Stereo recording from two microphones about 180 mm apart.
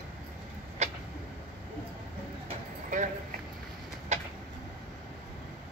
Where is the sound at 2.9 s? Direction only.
45° right (ahead or behind).